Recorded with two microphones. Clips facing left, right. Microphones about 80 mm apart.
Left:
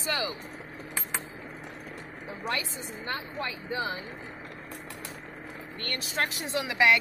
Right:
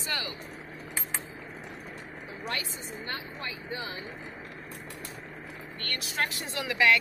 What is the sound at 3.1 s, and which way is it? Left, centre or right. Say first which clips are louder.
Speech: left 5 dB; left.